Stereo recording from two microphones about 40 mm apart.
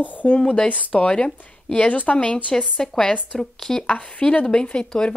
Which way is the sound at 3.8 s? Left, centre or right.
Left.